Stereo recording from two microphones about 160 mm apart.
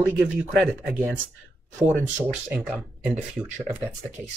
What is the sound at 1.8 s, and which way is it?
Speech, 10° right (ahead or behind).